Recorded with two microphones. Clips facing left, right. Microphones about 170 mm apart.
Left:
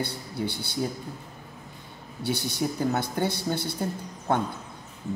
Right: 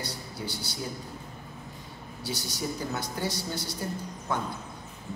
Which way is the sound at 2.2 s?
60° left (ahead or behind).